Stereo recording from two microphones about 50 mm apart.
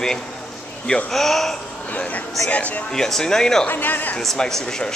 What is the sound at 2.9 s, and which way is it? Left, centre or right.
Speech, centre.